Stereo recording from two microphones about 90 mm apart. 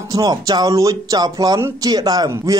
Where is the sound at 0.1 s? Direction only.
45° right (ahead or behind).